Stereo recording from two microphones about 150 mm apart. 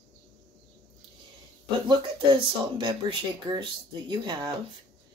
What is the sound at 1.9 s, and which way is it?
Speech, 30° right (ahead or behind).